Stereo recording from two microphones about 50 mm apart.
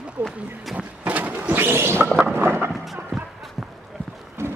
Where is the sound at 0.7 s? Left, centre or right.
Right.